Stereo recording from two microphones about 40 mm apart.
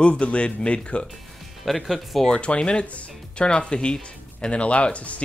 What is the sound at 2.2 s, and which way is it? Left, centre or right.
Speech, left.